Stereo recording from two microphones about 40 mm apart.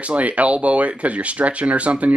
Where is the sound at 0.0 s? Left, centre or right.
Right.